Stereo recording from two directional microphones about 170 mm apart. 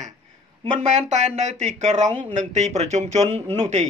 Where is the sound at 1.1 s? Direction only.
45° right (ahead or behind).